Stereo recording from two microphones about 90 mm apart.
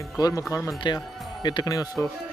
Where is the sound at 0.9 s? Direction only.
55° left (ahead or behind).